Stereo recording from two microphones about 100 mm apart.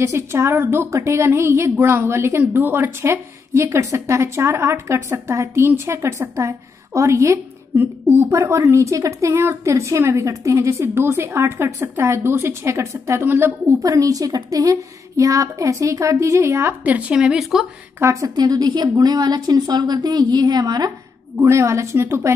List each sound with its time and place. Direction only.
0.0 s a woman's voice: 30° right (ahead or behind); by 17.6 s 5° right (ahead or behind)
18.2 s a woman's voice: 40° right (ahead or behind)
21.4 s a woman's voice: 30° right (ahead or behind)